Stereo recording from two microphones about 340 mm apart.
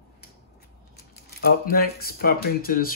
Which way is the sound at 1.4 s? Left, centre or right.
Left.